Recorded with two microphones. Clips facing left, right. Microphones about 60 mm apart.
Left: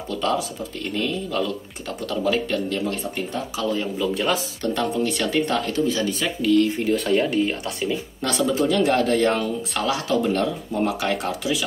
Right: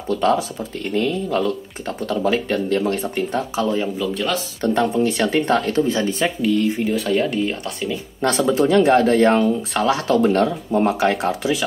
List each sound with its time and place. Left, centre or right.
0.1 s speech: right
2.8 s speech: right
3.5 s speech: right
4.0 s speech: centre
4.6 s speech: right
6.4 s speech: centre
6.8 s speech: centre
8.2 s speech: right